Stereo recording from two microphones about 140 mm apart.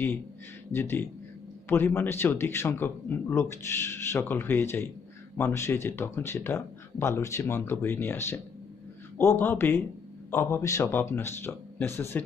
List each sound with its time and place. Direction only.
0.7 s speech: 15° left (ahead or behind)